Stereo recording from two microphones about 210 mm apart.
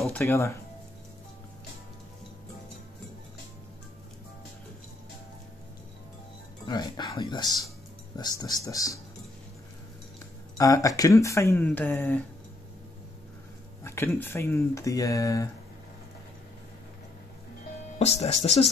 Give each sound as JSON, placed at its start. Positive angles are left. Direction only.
{"t": 0.1, "sound": "speech", "side_deg": 15}
{"t": 6.6, "sound": "speech", "side_deg": 20}
{"t": 10.6, "sound": "speech", "side_deg": 15}
{"t": 13.8, "sound": "speech", "side_deg": 10}
{"t": 17.9, "sound": "speech", "side_deg": 30}